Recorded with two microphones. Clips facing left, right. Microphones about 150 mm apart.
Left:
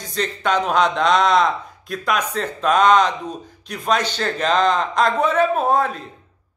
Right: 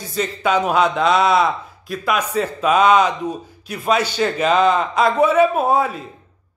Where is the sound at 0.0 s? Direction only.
5° right (ahead or behind).